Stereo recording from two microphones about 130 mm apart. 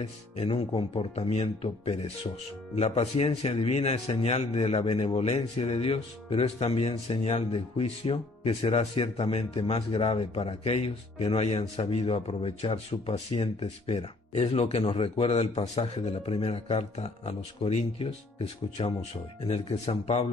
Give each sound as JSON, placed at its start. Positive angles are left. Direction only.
{"t": 0.0, "sound": "a man's voice", "side_deg": 50}